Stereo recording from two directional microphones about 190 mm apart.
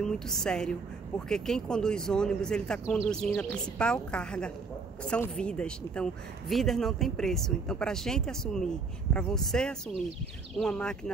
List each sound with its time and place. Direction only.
0.0 s speech: 5° left (ahead or behind)